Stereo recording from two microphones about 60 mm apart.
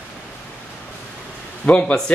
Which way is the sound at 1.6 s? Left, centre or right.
Left.